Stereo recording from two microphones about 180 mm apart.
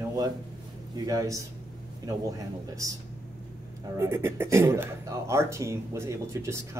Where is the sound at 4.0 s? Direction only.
15° right (ahead or behind).